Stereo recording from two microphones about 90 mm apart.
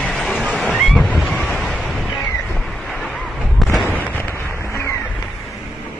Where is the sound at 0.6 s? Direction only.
Centre (ahead or behind).